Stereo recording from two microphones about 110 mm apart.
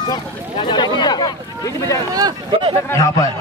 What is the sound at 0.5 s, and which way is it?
A man's voice, 45° left (ahead or behind).